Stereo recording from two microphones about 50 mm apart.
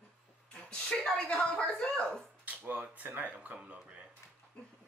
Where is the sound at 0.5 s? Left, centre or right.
Centre.